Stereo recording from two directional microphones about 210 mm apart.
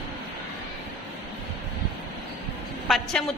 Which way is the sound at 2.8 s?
Centre (ahead or behind).